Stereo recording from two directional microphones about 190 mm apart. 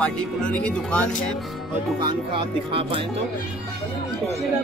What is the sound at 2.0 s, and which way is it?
Speech, 25° right (ahead or behind).